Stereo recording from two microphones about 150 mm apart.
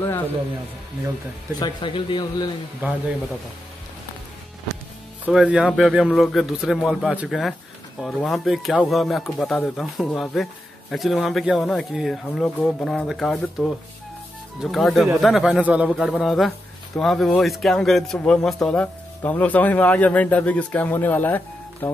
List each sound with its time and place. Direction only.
1.6 s a man's voice: 30° left (ahead or behind)
2.8 s speech: 10° right (ahead or behind)
5.2 s speech: 5° right (ahead or behind); by 22.0 s 10° left (ahead or behind)